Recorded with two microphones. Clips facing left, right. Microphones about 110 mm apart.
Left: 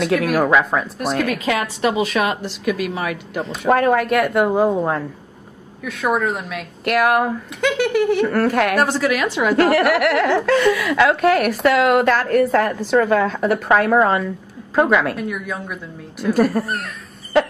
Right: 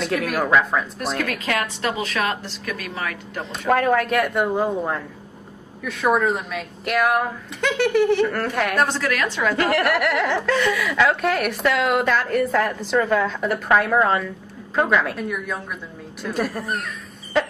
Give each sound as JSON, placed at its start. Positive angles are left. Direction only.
{"t": 0.0, "sound": "speech", "side_deg": 0}
{"t": 3.7, "sound": "speech", "side_deg": 5}
{"t": 9.6, "sound": "speech", "side_deg": 5}